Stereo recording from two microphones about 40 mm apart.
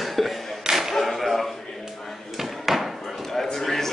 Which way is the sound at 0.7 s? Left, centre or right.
Centre.